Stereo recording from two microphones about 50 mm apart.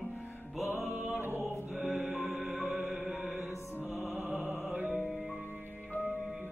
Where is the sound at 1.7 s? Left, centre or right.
Centre.